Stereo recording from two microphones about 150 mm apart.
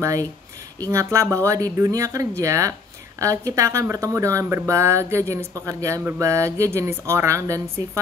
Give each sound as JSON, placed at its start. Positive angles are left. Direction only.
{"t": 0.0, "sound": "speech", "side_deg": -20}